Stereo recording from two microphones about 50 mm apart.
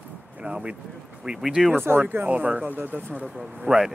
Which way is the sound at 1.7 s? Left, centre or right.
Right.